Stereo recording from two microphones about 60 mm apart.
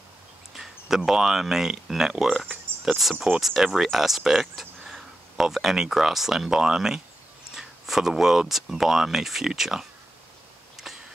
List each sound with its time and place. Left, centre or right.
0.6 s speech: centre
2.7 s a sound: right
3.0 s speech: centre